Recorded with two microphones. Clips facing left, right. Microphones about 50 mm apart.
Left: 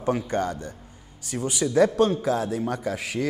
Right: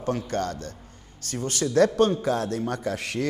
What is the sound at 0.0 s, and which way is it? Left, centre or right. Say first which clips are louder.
A man's voice: left 2 dB; centre.